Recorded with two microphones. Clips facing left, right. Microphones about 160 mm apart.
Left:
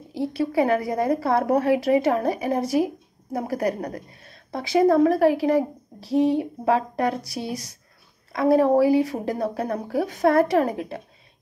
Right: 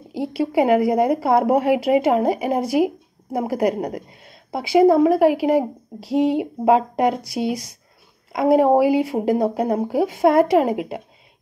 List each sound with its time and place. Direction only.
0.1 s a woman's voice: 10° right (ahead or behind)